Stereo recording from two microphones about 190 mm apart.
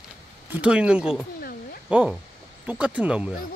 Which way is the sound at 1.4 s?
50° left (ahead or behind).